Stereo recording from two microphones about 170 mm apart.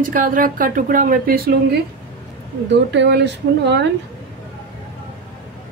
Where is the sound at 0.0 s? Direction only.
55° right (ahead or behind).